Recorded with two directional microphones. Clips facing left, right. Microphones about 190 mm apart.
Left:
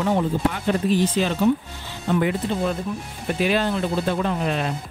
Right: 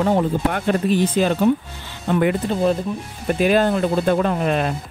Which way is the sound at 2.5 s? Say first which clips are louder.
Right 5 dB; 40° right (ahead or behind).